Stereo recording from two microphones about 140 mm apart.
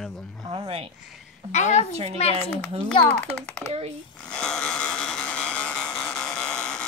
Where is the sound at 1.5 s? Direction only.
55° left (ahead or behind).